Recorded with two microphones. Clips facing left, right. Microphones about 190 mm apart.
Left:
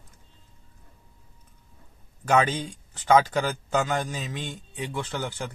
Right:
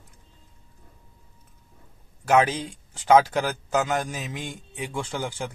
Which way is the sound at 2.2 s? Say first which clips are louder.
Right 2 dB; 10° right (ahead or behind).